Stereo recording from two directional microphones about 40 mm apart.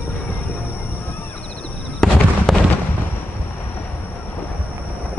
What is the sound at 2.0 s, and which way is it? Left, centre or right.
Fireworks, centre.